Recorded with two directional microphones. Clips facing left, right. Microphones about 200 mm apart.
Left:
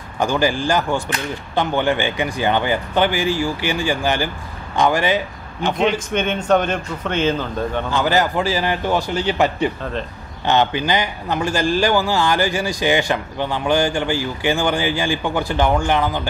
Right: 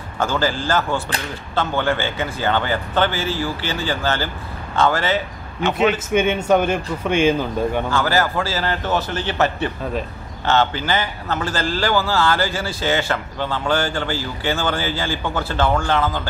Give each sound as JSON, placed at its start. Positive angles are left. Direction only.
{"t": 0.2, "sound": "a man's voice", "side_deg": 15}
{"t": 5.8, "sound": "a man's voice", "side_deg": -5}
{"t": 7.9, "sound": "a man's voice", "side_deg": 20}